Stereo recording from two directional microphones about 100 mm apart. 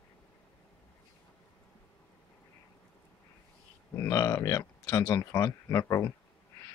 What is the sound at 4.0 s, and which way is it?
Speech, 30° left (ahead or behind).